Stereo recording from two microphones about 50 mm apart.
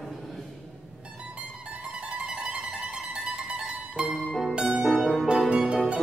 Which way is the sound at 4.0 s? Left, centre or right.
Centre.